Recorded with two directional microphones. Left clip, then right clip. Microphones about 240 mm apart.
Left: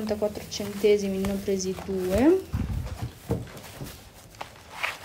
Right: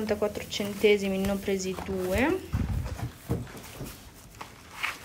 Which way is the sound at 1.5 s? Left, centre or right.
Right.